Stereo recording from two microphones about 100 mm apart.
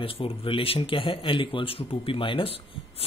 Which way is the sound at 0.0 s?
65° left (ahead or behind).